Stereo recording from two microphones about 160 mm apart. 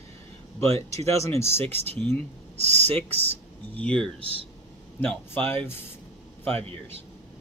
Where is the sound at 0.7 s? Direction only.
40° right (ahead or behind).